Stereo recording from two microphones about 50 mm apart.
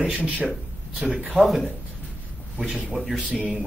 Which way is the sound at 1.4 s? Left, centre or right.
Centre.